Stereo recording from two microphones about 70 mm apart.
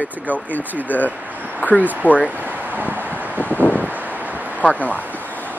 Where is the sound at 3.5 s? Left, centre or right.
Left.